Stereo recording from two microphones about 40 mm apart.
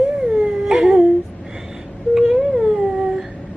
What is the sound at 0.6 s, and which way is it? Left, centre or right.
Speech, centre.